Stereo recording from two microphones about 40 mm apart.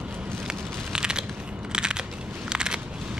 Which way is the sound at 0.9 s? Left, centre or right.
Right.